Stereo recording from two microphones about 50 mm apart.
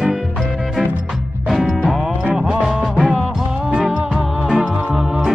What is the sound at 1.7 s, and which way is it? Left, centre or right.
Music, centre.